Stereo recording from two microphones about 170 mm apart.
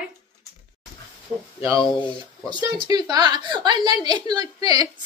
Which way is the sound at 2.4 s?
25° right (ahead or behind).